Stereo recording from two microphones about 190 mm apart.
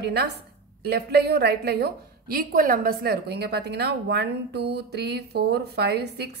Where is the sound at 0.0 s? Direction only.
60° right (ahead or behind).